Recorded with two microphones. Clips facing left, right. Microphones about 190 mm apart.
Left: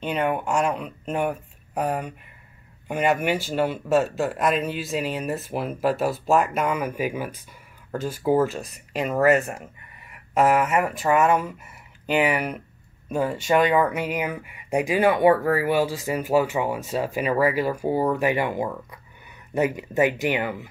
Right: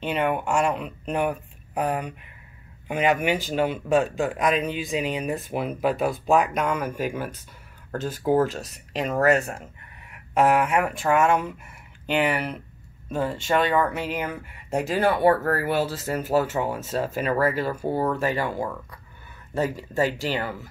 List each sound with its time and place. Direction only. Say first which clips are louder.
0.0 s speech: even; centre (ahead or behind)
3.2 s speech: even; 5° left (ahead or behind)